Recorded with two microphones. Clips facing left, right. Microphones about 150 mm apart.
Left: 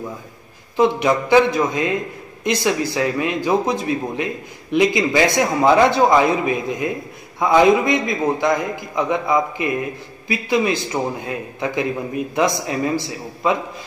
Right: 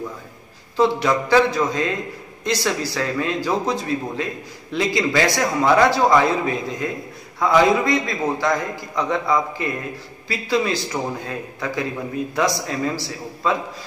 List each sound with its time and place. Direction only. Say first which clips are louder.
0.7 s a man's voice: left 2 dB; 15° left (ahead or behind)